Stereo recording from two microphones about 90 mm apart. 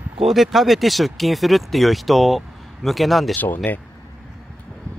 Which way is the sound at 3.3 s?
20° left (ahead or behind).